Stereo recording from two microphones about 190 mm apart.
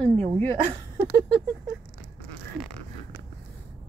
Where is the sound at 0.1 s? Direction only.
30° right (ahead or behind).